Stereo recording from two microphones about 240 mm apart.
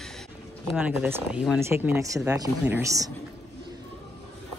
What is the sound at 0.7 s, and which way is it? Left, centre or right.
Speech, centre.